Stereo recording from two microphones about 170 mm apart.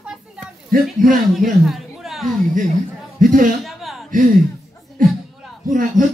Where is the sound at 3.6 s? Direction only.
Centre (ahead or behind).